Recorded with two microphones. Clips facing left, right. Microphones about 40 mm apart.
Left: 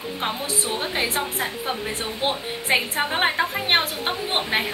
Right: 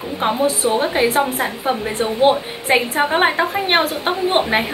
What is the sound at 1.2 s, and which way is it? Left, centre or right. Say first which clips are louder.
A woman's voice: right 7 dB; centre.